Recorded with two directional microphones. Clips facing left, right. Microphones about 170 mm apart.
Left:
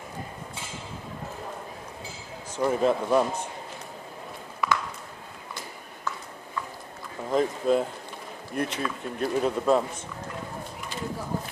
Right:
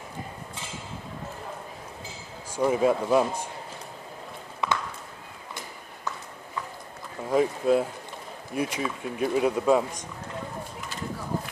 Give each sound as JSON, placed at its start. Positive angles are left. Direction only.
{"t": 2.5, "sound": "speech", "side_deg": -10}
{"t": 4.6, "sound": "a sound", "side_deg": -25}
{"t": 7.2, "sound": "speech", "side_deg": -10}